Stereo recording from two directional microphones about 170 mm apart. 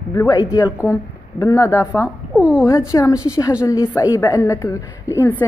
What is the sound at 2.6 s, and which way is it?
A woman's voice, 20° left (ahead or behind).